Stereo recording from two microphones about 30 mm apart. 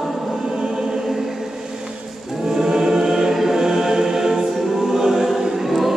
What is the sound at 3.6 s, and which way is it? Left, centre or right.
Music, centre.